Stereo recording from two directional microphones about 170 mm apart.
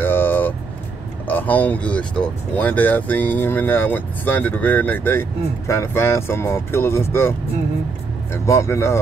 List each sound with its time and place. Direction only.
0.0 s vehicle: 10° left (ahead or behind)
1.2 s speech: 10° left (ahead or behind)